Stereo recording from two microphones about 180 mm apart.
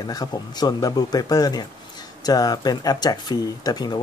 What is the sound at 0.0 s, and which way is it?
Speech, 20° left (ahead or behind).